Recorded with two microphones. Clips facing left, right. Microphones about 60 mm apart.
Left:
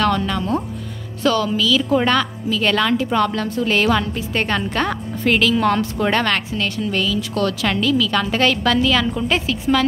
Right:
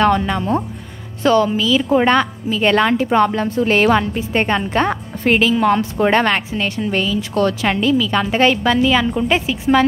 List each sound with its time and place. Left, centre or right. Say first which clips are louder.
0.0 s speech: right 4 dB; right
4.8 s music: right 2 dB; right
5.5 s a woman's voice: right 2 dB; centre
5.8 s speech: right 4 dB; right